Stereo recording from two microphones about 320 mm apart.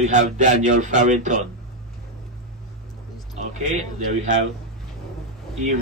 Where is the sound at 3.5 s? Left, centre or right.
Right.